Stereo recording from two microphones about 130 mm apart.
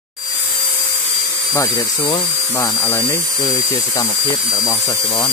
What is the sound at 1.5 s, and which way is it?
Speech, 25° left (ahead or behind).